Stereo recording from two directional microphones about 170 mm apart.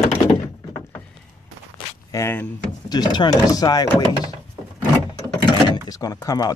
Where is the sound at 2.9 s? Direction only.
25° left (ahead or behind).